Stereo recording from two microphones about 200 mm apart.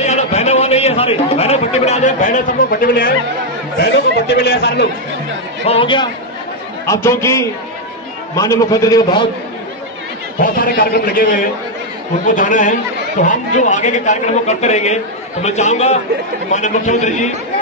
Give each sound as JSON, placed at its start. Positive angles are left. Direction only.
{"t": 0.0, "sound": "a man's voice", "side_deg": 35}
{"t": 5.7, "sound": "a man's voice", "side_deg": 25}
{"t": 6.9, "sound": "a man's voice", "side_deg": 15}
{"t": 10.4, "sound": "a man's voice", "side_deg": 45}